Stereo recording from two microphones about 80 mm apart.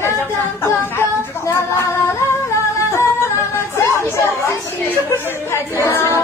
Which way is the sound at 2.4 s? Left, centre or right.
Left.